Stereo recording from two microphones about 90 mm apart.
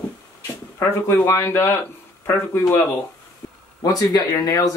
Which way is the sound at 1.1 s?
30° left (ahead or behind).